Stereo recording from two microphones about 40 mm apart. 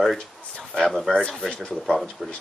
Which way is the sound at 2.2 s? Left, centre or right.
Centre.